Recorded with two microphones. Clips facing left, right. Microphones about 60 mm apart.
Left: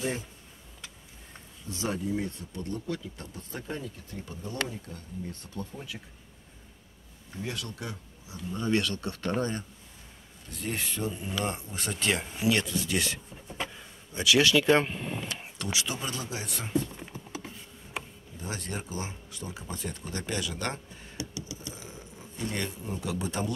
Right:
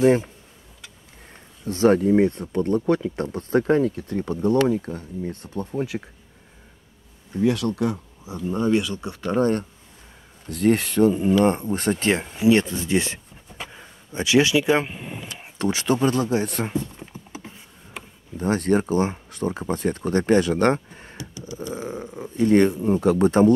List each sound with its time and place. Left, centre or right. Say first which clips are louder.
0.0 s speech: right 16 dB; right
1.7 s speech: right 15 dB; right
5.3 s speech: right 9 dB; right
7.3 s speech: right 16 dB; right
8.7 s speech: right 5 dB; centre
10.5 s speech: right 15 dB; right
11.2 s speech: right 14 dB; right; by 15.4 s centre
15.6 s speech: right 13 dB; right
17.1 s a sound: right 1 dB; right
18.4 s speech: right 16 dB; right